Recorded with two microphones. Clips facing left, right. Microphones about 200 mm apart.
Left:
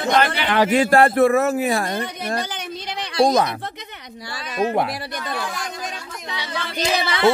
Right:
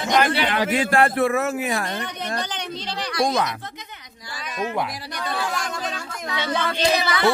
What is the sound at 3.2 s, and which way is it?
Speech, 40° left (ahead or behind).